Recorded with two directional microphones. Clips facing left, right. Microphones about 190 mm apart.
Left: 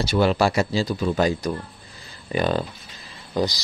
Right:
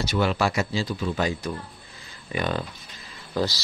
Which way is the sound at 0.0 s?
30° left (ahead or behind).